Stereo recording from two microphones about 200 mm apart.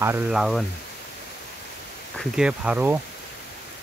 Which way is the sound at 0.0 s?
10° right (ahead or behind).